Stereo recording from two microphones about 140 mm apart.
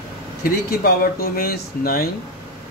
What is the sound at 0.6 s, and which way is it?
Speech, 90° left.